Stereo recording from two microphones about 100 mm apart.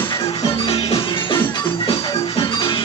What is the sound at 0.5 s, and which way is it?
Music, 65° left (ahead or behind).